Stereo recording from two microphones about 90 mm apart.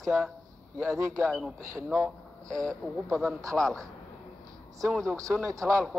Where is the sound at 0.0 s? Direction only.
Centre (ahead or behind).